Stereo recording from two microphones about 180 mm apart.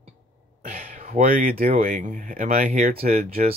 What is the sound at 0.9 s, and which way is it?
Speech, 45° right (ahead or behind).